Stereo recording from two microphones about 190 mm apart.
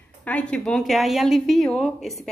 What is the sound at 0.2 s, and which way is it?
A woman's voice, 5° left (ahead or behind).